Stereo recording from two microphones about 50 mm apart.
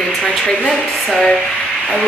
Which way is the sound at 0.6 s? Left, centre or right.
Centre.